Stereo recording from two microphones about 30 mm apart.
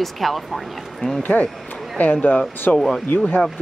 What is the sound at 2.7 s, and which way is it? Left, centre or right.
Speech, left.